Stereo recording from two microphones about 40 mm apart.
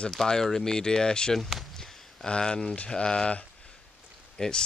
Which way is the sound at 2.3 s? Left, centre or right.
Left.